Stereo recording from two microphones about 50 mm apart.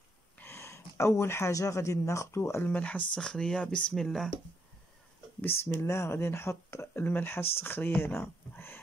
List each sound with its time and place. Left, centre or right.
0.5 s speech: left
2.8 s speech: left
3.9 s speech: centre
5.4 s speech: left
7.0 s speech: left